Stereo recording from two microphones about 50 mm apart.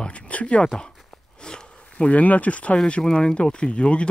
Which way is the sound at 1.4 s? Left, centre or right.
Centre.